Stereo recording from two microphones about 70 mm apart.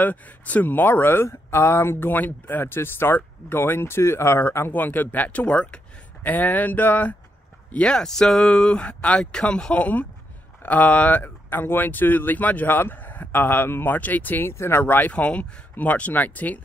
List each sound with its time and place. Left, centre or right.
0.0 s speech: left
7.7 s speech: centre
14.5 s speech: left